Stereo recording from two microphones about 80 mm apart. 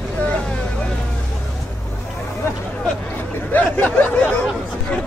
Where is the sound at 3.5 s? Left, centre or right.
Left.